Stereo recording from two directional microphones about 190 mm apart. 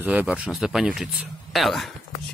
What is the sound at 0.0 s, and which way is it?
Speech, 10° right (ahead or behind).